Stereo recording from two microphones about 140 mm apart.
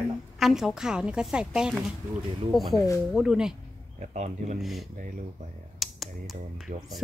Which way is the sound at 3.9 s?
55° right (ahead or behind).